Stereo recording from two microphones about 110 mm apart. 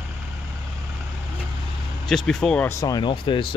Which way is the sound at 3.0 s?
50° left (ahead or behind).